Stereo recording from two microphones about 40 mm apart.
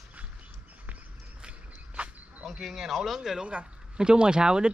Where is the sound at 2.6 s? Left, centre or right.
Centre.